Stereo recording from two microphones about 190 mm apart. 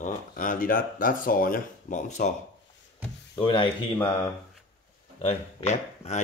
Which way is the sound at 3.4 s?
25° left (ahead or behind).